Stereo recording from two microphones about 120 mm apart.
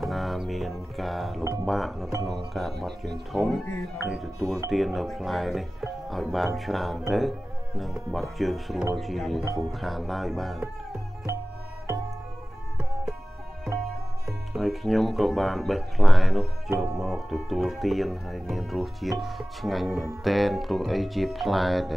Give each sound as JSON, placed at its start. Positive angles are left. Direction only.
{"t": 0.0, "sound": "music", "side_deg": 0}
{"t": 1.4, "sound": "speech", "side_deg": -25}
{"t": 1.7, "sound": "speech", "side_deg": 0}
{"t": 14.5, "sound": "speech", "side_deg": 0}